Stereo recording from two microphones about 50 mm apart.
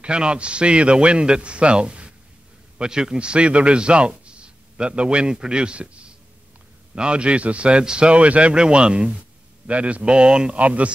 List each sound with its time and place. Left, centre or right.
0.0 s a man's voice: right